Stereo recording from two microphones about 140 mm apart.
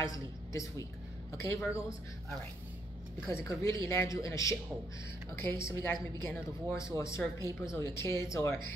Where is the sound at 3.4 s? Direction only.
20° left (ahead or behind).